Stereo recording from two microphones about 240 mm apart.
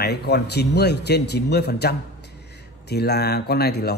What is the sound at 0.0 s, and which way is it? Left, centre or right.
Speech, left.